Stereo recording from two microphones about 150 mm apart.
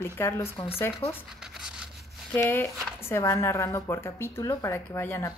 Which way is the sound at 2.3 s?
15° left (ahead or behind).